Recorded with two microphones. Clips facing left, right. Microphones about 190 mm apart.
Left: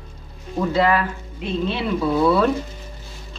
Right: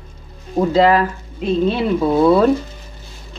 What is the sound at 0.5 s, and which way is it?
Speech, 35° right (ahead or behind).